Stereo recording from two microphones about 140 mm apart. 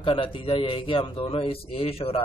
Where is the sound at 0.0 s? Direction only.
40° left (ahead or behind).